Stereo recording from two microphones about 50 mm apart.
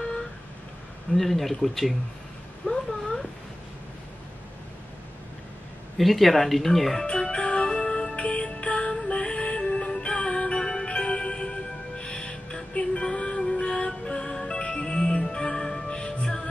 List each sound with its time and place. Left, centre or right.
1.1 s speech: centre
2.6 s a sound: centre
5.9 s speech: centre
7.1 s music: centre
8.2 s music: left